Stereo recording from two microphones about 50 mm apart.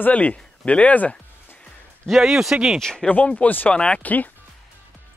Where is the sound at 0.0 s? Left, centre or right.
Left.